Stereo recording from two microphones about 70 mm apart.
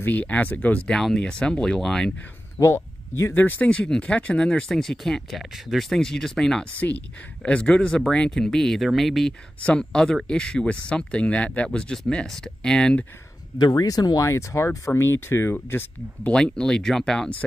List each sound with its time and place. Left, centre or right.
0.0 s speech: left
0.8 s speech: centre
2.6 s speech: left
3.3 s speech: left
13.6 s speech: left
14.9 s speech: left
16.3 s speech: centre